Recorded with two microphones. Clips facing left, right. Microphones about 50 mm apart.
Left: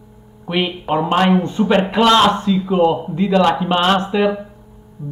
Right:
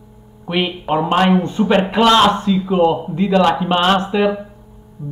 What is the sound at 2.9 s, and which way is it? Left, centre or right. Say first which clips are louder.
Speech: even; centre.